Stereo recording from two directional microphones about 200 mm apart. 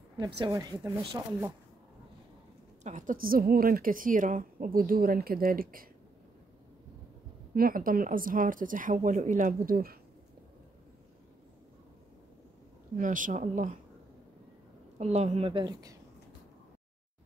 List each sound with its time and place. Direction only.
0.2 s speech: 15° right (ahead or behind)
2.8 s a woman's voice: 35° right (ahead or behind)
7.5 s a woman's voice: 45° right (ahead or behind)
12.9 s speech: 40° right (ahead or behind)
15.0 s a woman's voice: 35° right (ahead or behind)